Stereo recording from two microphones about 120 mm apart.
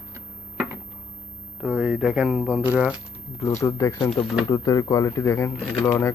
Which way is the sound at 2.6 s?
10° right (ahead or behind).